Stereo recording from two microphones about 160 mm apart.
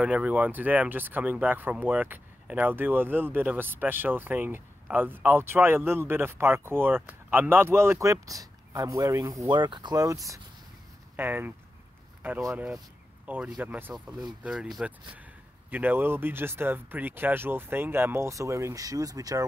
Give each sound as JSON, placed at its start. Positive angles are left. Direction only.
{"t": 0.0, "sound": "speech", "side_deg": -10}
{"t": 11.1, "sound": "speech", "side_deg": -10}